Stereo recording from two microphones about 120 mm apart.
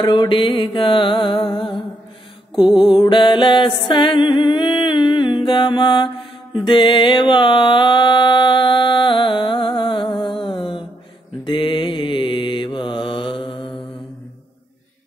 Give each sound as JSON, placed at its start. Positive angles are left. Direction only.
{"t": 0.0, "sound": "music", "side_deg": 35}
{"t": 2.6, "sound": "mantra", "side_deg": 0}
{"t": 2.9, "sound": "music", "side_deg": 40}
{"t": 11.4, "sound": "mantra", "side_deg": 45}